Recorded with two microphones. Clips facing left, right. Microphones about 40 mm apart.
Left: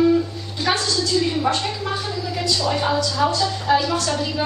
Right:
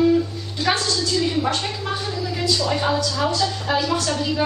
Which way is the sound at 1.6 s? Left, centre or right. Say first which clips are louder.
Left 1 dB; centre.